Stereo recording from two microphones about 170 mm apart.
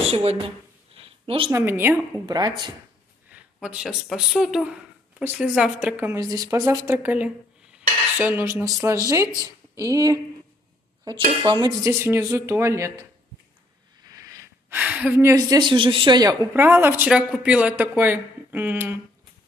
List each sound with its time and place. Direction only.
0.1 s a woman's voice: 35° right (ahead or behind)
0.9 s a sound: 35° right (ahead or behind)
1.5 s a woman's voice: 15° right (ahead or behind)
3.6 s a woman's voice: 5° right (ahead or behind)
14.1 s speech: 20° right (ahead or behind)
16.5 s speech: 10° right (ahead or behind)